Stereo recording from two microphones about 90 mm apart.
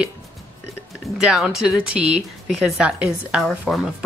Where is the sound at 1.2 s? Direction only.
5° right (ahead or behind).